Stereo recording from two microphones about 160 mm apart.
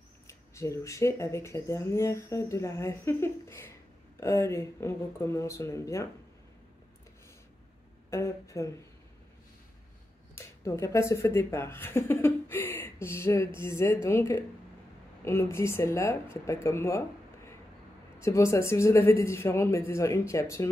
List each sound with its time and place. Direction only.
0.3 s speech: 20° left (ahead or behind)
8.1 s speech: 20° left (ahead or behind)
10.3 s speech: 20° left (ahead or behind)
18.2 s speech: 15° left (ahead or behind)